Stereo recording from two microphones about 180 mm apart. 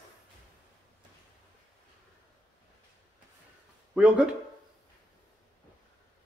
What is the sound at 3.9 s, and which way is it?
Speech, 5° right (ahead or behind).